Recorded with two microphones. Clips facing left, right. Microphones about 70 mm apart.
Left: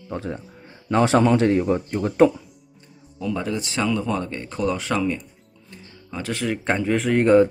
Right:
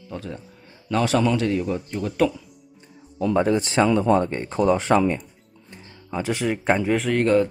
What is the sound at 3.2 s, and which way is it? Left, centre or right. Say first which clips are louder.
Speech: right 6 dB; right.